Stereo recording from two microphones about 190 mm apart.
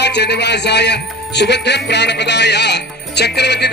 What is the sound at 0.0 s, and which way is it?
Speech, 60° left (ahead or behind).